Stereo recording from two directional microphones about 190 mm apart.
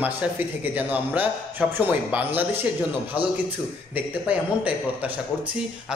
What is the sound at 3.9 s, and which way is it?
A man's voice, 10° right (ahead or behind).